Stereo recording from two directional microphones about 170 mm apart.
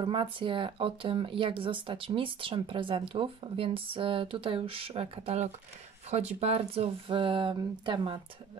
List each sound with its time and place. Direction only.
0.0 s speech: 30° right (ahead or behind)